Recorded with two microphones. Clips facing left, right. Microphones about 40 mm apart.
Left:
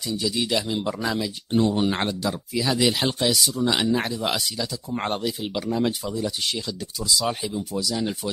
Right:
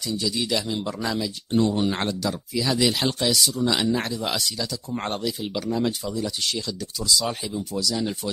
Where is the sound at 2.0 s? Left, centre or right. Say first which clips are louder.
Left 1 dB; centre.